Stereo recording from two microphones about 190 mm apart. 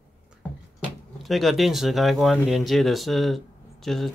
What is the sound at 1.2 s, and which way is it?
Speech, centre (ahead or behind).